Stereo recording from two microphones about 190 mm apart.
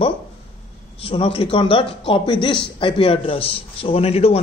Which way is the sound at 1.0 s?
30° left (ahead or behind).